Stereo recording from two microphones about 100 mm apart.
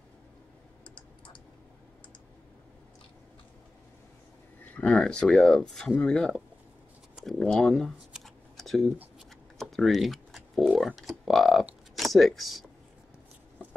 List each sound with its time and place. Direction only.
0.9 s clicking: 55° left (ahead or behind)
4.7 s speech: 10° left (ahead or behind)
7.2 s computer keyboard: 5° left (ahead or behind)
9.6 s typing: centre (ahead or behind)
10.9 s speech: centre (ahead or behind)